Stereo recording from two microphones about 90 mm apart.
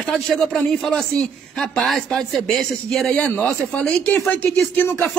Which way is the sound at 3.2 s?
15° left (ahead or behind).